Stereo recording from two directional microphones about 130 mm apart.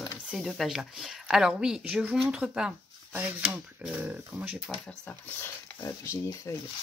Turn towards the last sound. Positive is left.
turn(degrees=25)  # may be behind; listen again after turning